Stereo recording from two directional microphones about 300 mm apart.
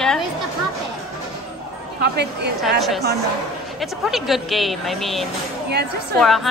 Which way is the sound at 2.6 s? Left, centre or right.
Centre.